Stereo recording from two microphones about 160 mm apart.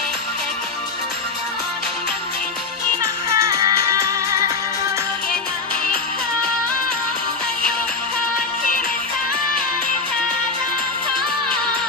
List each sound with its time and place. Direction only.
3.3 s music: 20° right (ahead or behind)